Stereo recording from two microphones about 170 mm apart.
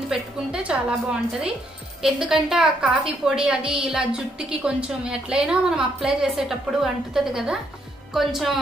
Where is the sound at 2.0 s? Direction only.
5° right (ahead or behind).